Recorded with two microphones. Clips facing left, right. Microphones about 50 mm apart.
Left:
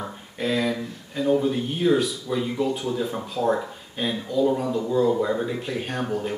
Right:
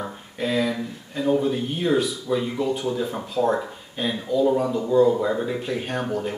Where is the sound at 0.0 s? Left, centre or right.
Centre.